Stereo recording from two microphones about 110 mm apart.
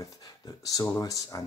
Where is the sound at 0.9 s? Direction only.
30° left (ahead or behind).